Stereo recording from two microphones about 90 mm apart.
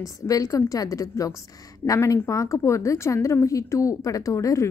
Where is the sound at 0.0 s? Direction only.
40° left (ahead or behind).